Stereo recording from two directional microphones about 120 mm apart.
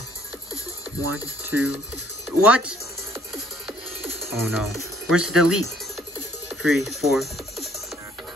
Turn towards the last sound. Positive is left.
turn(degrees=0)  # may be behind; listen again after turning